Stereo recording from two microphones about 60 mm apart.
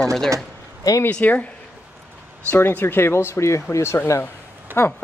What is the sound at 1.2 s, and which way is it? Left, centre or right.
Speech, left.